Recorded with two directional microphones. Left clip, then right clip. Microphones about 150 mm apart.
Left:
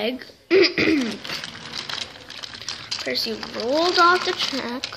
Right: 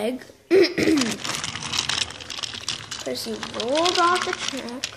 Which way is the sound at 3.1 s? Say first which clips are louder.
Left 5 dB; 10° right (ahead or behind).